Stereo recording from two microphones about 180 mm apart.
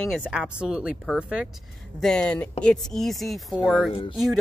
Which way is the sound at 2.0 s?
5° left (ahead or behind).